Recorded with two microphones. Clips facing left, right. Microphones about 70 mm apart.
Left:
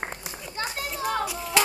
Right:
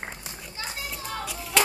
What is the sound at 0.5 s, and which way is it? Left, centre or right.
Children playing, left.